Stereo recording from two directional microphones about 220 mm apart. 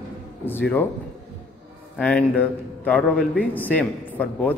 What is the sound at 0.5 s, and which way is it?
Speech, 10° left (ahead or behind).